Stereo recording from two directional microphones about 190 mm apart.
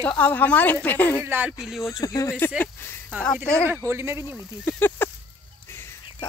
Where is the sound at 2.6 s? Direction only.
10° left (ahead or behind).